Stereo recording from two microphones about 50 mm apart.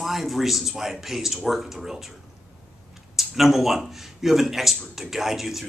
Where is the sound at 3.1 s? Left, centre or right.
Centre.